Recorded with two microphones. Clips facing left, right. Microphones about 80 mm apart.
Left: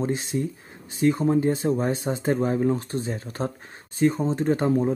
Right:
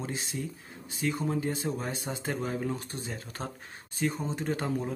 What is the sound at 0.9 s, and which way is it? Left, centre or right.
Speech, left.